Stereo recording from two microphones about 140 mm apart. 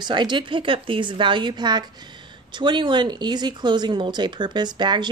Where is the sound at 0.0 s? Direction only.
30° right (ahead or behind).